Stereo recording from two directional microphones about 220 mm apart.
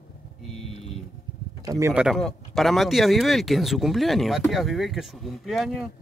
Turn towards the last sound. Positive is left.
turn(degrees=0)  # may be behind; listen again after turning